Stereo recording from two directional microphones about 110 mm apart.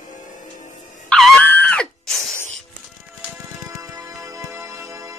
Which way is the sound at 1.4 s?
15° left (ahead or behind).